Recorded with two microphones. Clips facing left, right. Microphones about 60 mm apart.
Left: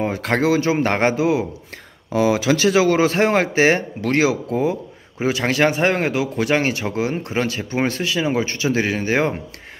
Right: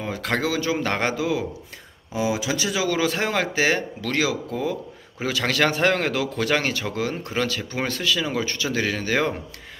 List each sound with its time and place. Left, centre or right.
0.0 s speech: left
2.1 s speech: left